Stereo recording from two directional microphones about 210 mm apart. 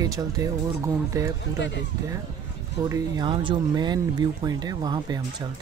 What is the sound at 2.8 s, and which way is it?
Speech, 15° right (ahead or behind).